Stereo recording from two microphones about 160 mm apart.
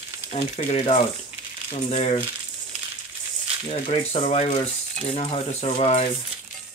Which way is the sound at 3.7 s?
40° left (ahead or behind).